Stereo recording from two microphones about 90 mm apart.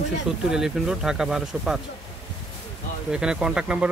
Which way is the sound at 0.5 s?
5° right (ahead or behind).